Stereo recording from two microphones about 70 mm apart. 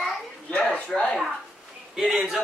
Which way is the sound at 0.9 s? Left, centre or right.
Centre.